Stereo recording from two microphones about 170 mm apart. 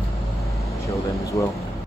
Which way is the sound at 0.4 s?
Centre (ahead or behind).